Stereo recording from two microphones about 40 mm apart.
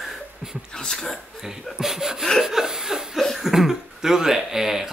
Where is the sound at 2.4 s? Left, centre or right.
Centre.